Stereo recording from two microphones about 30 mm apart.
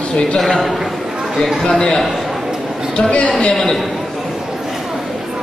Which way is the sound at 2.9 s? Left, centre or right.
Left.